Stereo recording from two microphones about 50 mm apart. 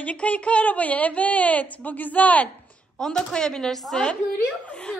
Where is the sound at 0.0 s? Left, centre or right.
Left.